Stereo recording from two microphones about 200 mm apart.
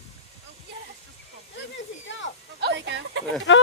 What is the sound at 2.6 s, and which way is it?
Speech, 60° right (ahead or behind).